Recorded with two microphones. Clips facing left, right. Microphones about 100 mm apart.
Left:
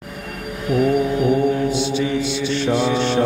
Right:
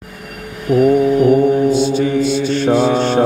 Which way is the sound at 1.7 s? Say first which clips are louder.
Right 6 dB; 40° right (ahead or behind).